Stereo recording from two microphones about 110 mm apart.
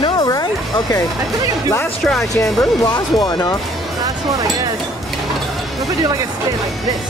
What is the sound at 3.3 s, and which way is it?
Speech, 35° left (ahead or behind).